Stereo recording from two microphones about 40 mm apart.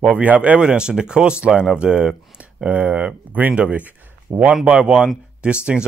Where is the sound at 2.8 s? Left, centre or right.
Right.